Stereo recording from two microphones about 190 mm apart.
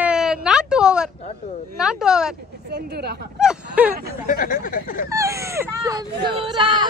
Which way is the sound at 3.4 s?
5° right (ahead or behind).